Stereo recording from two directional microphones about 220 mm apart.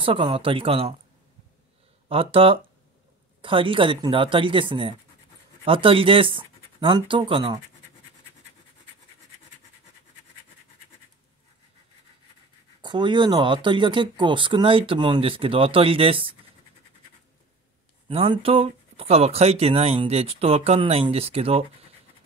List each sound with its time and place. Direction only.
0.0 s speech: 25° right (ahead or behind)
2.0 s speech: 25° right (ahead or behind)
12.8 s speech: 20° right (ahead or behind)
18.0 s speech: 25° right (ahead or behind)